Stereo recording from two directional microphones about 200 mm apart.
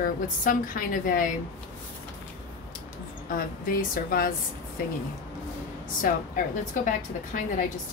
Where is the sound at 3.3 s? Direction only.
45° left (ahead or behind).